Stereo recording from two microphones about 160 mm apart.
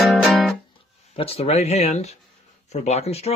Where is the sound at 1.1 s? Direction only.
35° left (ahead or behind).